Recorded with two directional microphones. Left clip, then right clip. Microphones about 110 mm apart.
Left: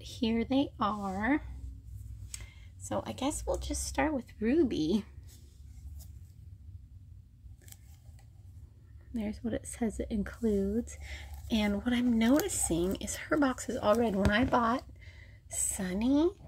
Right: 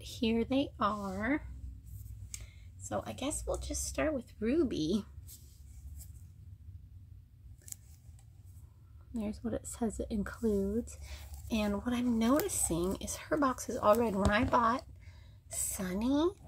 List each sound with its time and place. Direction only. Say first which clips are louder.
0.0 s a woman's voice: even; centre (ahead or behind); by 1.4 s 20° left (ahead or behind)
2.8 s speech: left 3 dB; 60° left (ahead or behind); by 4.1 s 35° left (ahead or behind)
4.4 s speech: left 4 dB; 15° left (ahead or behind)
9.1 s a woman's voice: left 2 dB; 5° left (ahead or behind)
10.6 s speech: left 2 dB; 15° left (ahead or behind)
14.0 s a woman's voice: left 2 dB; 30° left (ahead or behind)